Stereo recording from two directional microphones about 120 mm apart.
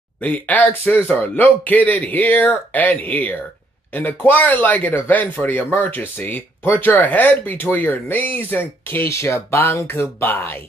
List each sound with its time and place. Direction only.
0.2 s speech: 15° left (ahead or behind)